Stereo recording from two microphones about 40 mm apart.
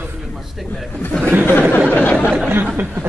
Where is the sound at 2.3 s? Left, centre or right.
Right.